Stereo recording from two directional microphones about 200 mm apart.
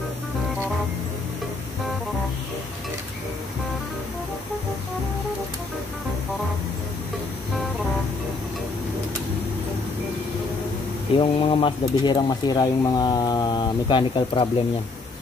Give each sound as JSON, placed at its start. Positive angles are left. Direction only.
{"t": 11.1, "sound": "speech", "side_deg": 25}